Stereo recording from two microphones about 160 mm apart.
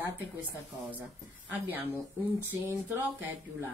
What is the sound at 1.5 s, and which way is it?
Speech, 10° right (ahead or behind).